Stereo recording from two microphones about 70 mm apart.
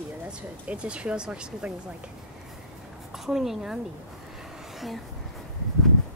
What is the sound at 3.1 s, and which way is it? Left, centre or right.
Speech, centre.